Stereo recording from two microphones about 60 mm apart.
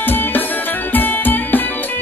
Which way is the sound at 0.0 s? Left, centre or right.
Left.